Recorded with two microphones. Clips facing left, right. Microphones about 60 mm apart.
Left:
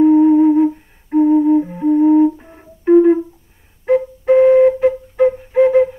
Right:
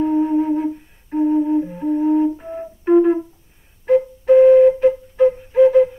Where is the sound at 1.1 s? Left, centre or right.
Left.